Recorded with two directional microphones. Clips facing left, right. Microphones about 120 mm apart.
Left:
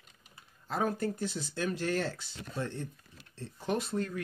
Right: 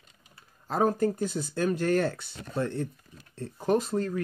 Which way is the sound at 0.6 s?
40° right (ahead or behind).